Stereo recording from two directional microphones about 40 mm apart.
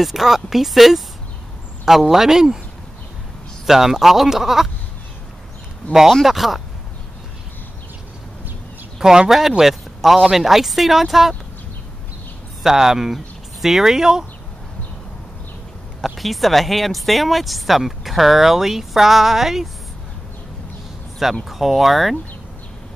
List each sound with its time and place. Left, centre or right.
0.0 s speech: centre
3.6 s speech: centre
6.2 s speech: centre
9.0 s speech: centre
12.6 s speech: centre
16.0 s speech: centre
21.5 s speech: centre